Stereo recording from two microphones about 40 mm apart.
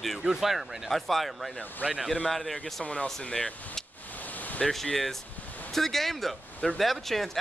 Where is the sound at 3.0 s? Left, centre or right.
Centre.